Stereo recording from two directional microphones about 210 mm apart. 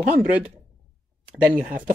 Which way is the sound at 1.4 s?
5° right (ahead or behind).